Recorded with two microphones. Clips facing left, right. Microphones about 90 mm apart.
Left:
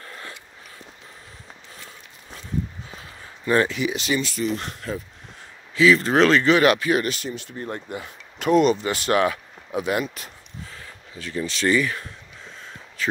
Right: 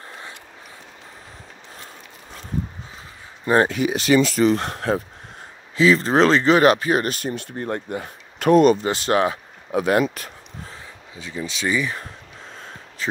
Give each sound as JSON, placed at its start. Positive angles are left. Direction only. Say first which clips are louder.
{"t": 3.6, "sound": "speech", "louder": "right 4 dB", "side_deg": -45}
{"t": 4.2, "sound": "speech", "louder": "right 8 dB", "side_deg": -90}
{"t": 4.6, "sound": "speech", "louder": "right 8 dB", "side_deg": -55}
{"t": 5.8, "sound": "speech", "louder": "right 1 dB", "side_deg": -35}
{"t": 9.8, "sound": "speech", "louder": "right 5 dB", "side_deg": -45}
{"t": 11.1, "sound": "speech", "louder": "left 2 dB", "side_deg": -15}
{"t": 13.0, "sound": "a sound", "louder": "left 1 dB", "side_deg": -30}